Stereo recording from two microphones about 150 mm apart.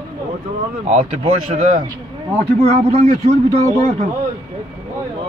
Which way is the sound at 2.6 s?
40° right (ahead or behind).